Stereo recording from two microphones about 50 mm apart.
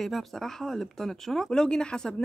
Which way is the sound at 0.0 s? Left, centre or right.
Centre.